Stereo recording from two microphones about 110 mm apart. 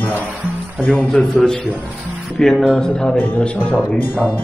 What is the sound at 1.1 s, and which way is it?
Speech, 5° left (ahead or behind).